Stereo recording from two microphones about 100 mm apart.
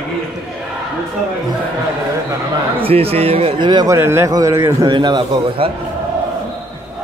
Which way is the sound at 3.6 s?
50° right (ahead or behind).